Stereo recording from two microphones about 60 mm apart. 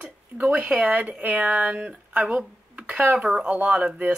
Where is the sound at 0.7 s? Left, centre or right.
Centre.